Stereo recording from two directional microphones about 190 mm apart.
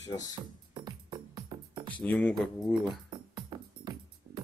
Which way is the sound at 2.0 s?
5° left (ahead or behind).